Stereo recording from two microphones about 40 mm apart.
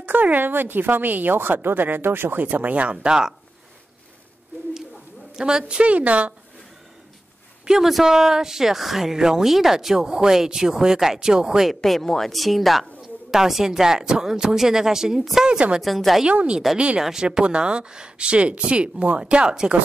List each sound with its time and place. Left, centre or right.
0.0 s speech: right
2.7 s speech: right
5.3 s speech: centre; by 6.3 s right
7.6 s speech: centre
11.7 s a woman's voice: centre
13.3 s speech: centre
15.8 s a woman's voice: centre
16.7 s speech: right
17.0 s speech: centre